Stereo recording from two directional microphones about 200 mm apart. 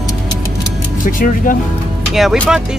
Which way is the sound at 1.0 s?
40° left (ahead or behind).